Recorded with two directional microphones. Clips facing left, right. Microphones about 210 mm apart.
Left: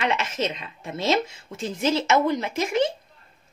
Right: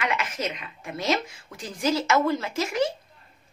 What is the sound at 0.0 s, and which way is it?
A woman's voice, 25° left (ahead or behind).